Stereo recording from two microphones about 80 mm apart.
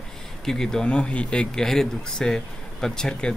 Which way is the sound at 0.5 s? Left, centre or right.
Centre.